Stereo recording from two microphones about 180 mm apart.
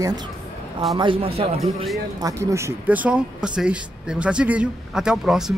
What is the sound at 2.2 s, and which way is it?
Speech, 15° right (ahead or behind).